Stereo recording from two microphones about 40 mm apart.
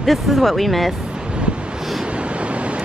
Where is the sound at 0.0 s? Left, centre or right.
Centre.